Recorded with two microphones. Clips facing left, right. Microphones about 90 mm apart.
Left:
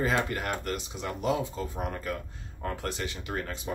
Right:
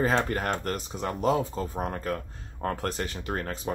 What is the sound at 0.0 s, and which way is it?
Speech, 40° right (ahead or behind).